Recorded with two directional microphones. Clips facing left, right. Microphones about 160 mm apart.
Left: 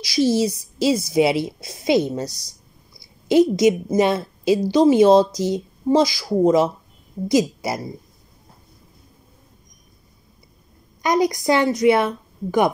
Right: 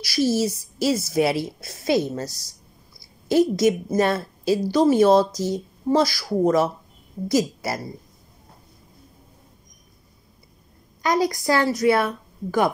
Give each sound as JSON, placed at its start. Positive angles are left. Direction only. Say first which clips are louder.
{"t": 0.0, "sound": "a woman's voice", "louder": "left 3 dB", "side_deg": 15}
{"t": 3.3, "sound": "a woman's voice", "louder": "left 3 dB", "side_deg": 15}
{"t": 11.0, "sound": "a woman's voice", "louder": "left 2 dB", "side_deg": 20}